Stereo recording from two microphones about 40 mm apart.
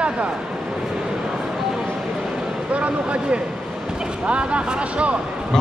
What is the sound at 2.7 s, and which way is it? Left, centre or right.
Speech, right.